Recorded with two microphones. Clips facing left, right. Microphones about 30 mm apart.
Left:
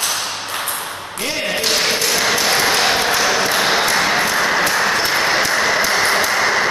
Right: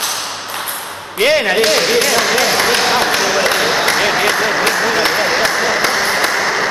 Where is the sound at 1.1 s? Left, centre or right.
Right.